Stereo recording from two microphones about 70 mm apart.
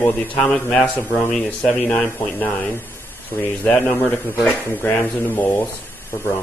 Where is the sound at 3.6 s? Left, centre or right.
Centre.